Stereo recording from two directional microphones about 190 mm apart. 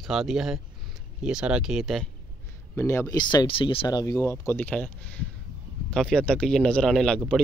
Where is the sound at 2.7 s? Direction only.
15° left (ahead or behind).